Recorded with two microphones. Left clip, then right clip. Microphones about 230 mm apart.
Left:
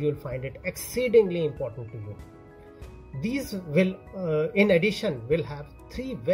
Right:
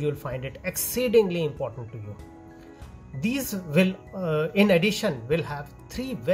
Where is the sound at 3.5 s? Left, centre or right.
Centre.